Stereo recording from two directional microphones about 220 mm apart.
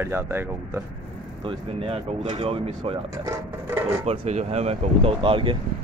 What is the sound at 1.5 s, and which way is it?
Speech, 25° right (ahead or behind).